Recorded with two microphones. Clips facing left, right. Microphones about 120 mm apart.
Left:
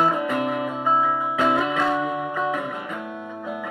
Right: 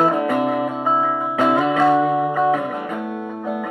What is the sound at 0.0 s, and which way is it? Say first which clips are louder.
Music: right 4 dB; 50° right (ahead or behind).